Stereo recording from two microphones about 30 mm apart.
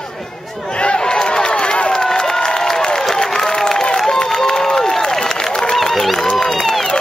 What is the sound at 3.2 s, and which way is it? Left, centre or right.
Applause, left.